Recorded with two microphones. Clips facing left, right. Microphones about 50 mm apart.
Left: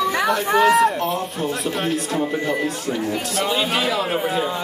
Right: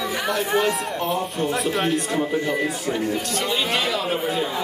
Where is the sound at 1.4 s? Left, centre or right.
Centre.